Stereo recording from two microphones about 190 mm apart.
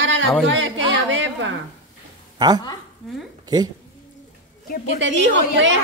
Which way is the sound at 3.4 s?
20° right (ahead or behind).